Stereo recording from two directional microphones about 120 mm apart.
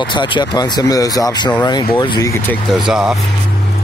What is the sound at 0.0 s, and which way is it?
Speech, 40° left (ahead or behind).